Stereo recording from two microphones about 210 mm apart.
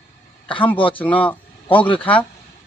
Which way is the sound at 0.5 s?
5° left (ahead or behind).